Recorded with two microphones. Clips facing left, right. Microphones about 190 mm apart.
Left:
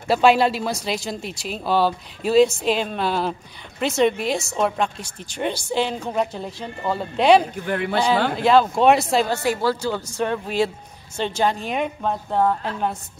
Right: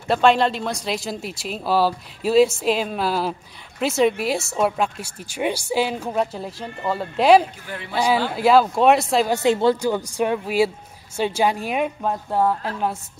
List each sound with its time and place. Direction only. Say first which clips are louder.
0.1 s speech: left 1 dB; 5° left (ahead or behind)
7.5 s speech: left 7 dB; 55° left (ahead or behind)
8.4 s speech: right 2 dB; 5° right (ahead or behind)
9.3 s a woman's voice: right 4 dB; 20° right (ahead or behind); by 12.9 s 5° right (ahead or behind)